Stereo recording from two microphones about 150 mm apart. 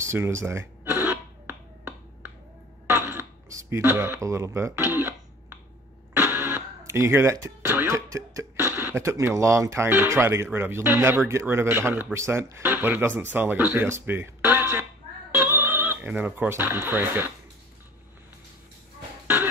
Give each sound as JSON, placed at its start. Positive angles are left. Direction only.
{"t": 0.0, "sound": "a sound", "side_deg": -20}
{"t": 6.1, "sound": "printer", "side_deg": -15}
{"t": 6.9, "sound": "speech", "side_deg": -15}
{"t": 19.2, "sound": "cough", "side_deg": -15}